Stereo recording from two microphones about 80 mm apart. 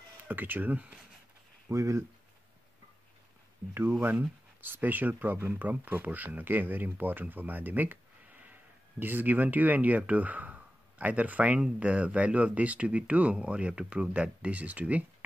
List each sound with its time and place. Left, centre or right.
0.2 s speech: right
1.7 s speech: right
4.6 s speech: right